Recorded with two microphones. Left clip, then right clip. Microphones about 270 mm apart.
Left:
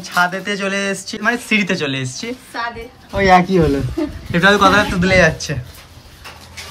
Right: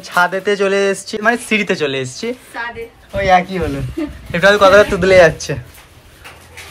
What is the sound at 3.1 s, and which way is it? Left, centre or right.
Speech, left.